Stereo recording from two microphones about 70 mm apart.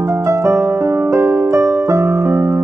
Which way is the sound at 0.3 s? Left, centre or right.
Right.